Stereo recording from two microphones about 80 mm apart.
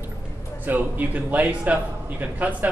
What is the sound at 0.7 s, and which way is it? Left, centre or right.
A man's voice, right.